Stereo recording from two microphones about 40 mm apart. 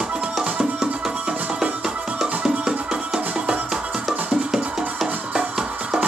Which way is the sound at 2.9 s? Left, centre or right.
Centre.